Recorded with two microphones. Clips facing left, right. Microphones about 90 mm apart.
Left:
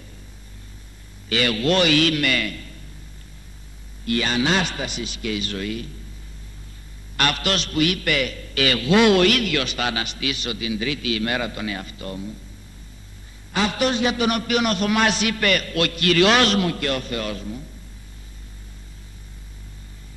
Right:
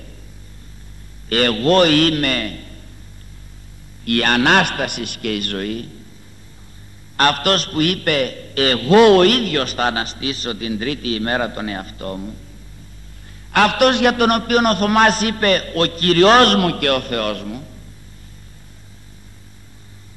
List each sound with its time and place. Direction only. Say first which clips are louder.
1.3 s a man's voice: right 5 dB; 45° right (ahead or behind)
4.0 s a man's voice: right 5 dB; 60° right (ahead or behind)
7.2 s a man's voice: right 6 dB; 45° right (ahead or behind)
13.5 s a man's voice: right 8 dB; 65° right (ahead or behind)